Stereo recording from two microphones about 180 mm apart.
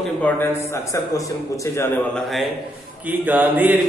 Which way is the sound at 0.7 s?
20° left (ahead or behind).